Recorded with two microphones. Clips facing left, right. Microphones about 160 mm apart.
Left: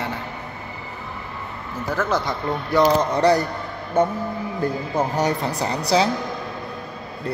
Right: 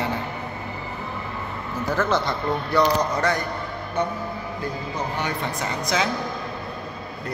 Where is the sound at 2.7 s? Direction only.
30° left (ahead or behind).